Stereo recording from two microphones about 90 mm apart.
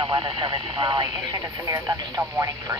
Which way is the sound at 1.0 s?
45° right (ahead or behind).